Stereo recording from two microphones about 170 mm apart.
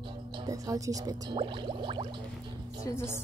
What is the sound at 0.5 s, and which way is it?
Speech, 20° right (ahead or behind).